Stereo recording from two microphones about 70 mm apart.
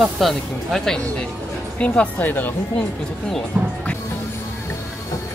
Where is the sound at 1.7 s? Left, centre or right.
Centre.